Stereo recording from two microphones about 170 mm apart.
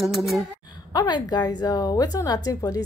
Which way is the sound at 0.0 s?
Centre (ahead or behind).